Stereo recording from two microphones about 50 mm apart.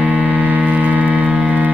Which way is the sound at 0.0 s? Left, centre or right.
Right.